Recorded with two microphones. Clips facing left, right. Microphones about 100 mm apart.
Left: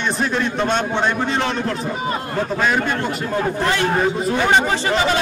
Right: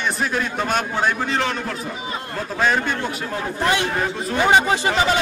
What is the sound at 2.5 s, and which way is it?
Speech, centre (ahead or behind).